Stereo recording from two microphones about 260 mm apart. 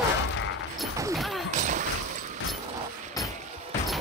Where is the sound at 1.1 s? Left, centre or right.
Centre.